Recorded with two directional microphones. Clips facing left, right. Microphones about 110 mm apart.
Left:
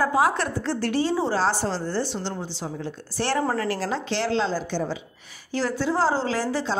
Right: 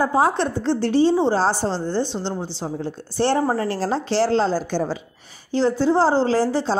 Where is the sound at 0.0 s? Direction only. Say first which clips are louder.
Right 3 dB; 30° right (ahead or behind).